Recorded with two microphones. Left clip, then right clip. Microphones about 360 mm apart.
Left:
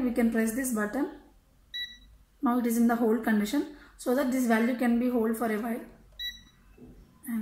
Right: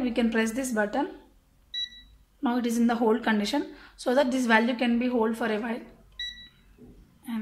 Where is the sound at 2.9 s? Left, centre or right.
Right.